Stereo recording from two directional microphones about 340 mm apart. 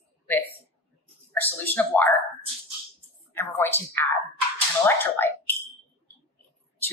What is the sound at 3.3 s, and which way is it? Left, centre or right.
A woman's voice, centre.